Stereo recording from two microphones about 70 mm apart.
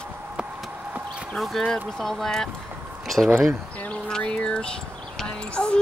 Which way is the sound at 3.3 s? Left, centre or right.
Right.